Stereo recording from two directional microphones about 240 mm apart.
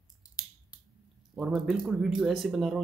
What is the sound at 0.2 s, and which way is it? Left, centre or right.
Finger snapping, centre.